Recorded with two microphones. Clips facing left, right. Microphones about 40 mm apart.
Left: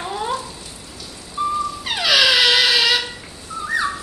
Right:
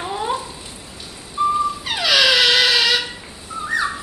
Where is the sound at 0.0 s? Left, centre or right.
Centre.